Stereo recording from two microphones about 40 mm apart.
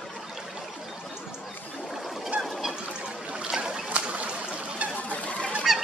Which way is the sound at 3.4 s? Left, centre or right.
Centre.